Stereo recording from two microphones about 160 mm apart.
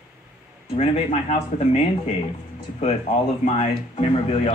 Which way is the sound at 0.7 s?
40° left (ahead or behind).